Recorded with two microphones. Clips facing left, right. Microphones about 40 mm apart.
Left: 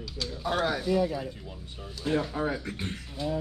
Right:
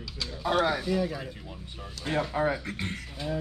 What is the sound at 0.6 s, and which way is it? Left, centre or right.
Speech, centre.